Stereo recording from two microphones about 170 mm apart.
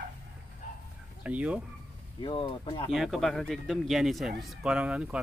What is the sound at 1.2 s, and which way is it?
Speech, 5° right (ahead or behind).